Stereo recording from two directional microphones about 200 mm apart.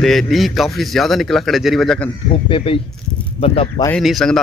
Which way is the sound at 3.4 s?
30° left (ahead or behind).